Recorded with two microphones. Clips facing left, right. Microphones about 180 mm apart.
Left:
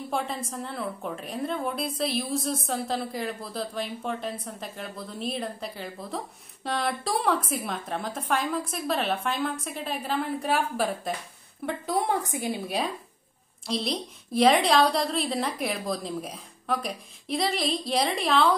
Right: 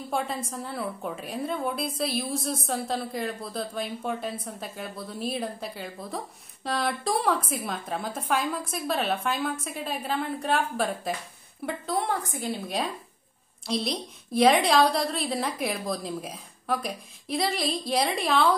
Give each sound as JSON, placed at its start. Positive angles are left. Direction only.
{"t": 0.1, "sound": "a woman's voice", "side_deg": 0}
{"t": 11.8, "sound": "a woman's voice", "side_deg": 15}
{"t": 12.6, "sound": "a woman's voice", "side_deg": 5}